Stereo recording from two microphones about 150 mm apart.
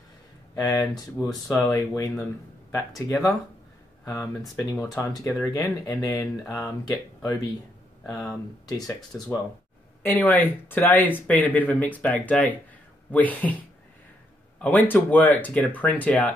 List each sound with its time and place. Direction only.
0.6 s speech: 20° left (ahead or behind)
4.0 s speech: 20° left (ahead or behind)
8.0 s speech: 5° left (ahead or behind)
8.3 s speech: 25° left (ahead or behind)
10.0 s speech: 10° left (ahead or behind)
14.6 s speech: 10° left (ahead or behind)